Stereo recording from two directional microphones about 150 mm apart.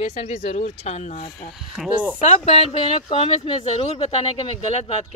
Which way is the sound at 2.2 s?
45° left (ahead or behind).